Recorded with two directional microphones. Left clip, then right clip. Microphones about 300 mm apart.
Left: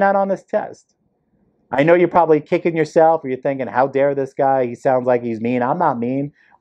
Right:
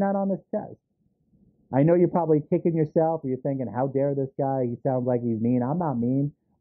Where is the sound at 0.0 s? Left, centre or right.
Centre.